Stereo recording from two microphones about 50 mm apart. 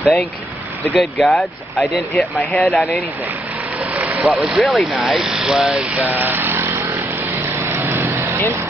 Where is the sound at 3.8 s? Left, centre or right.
Right.